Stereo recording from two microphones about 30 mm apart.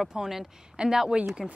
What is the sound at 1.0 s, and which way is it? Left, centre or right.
Speech, right.